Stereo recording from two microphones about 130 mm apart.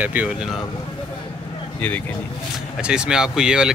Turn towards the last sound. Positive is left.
turn(degrees=-5)  # may be behind; listen again after turning